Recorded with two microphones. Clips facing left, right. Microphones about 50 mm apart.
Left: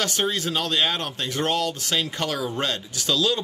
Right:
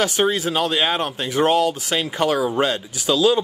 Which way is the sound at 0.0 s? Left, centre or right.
Centre.